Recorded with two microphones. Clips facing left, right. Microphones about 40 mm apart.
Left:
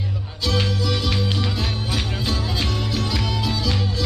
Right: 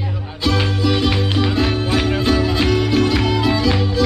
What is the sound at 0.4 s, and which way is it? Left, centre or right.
Music, right.